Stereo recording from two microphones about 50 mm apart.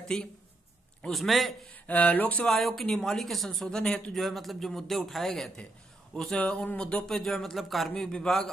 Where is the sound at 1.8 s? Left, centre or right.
Left.